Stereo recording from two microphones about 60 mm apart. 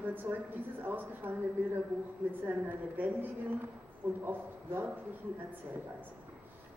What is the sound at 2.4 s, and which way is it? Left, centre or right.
A woman's voice, right.